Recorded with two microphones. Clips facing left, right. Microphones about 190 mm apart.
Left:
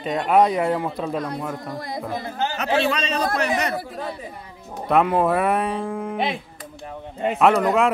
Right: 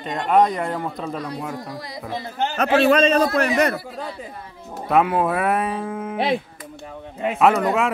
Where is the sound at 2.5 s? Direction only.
50° right (ahead or behind).